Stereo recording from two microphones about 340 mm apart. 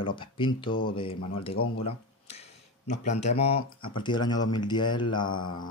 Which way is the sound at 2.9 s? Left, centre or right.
Centre.